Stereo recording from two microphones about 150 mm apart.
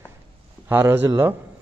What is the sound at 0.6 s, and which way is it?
Speech, 15° right (ahead or behind).